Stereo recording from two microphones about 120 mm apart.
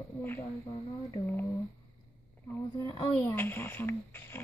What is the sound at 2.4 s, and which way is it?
Speech, 25° left (ahead or behind).